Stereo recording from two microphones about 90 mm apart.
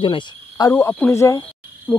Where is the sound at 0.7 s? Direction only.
25° left (ahead or behind).